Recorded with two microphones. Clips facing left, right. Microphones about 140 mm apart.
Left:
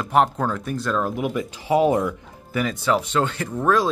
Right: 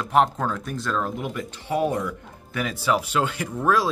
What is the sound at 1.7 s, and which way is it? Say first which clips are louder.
Speech: left 5 dB; 90° left.